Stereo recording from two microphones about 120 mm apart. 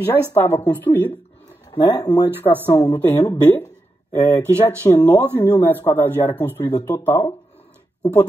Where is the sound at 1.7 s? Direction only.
35° left (ahead or behind).